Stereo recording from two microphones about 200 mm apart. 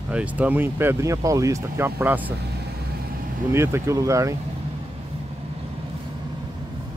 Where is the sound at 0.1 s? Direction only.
5° right (ahead or behind).